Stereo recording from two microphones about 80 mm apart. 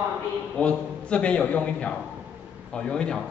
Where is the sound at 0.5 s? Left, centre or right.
Centre.